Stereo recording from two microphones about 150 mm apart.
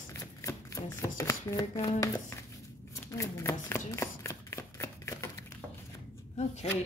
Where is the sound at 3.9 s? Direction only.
20° left (ahead or behind).